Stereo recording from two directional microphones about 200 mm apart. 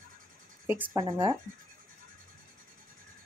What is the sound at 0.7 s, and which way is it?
Speech, 15° right (ahead or behind).